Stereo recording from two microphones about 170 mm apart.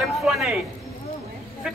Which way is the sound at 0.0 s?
Centre (ahead or behind).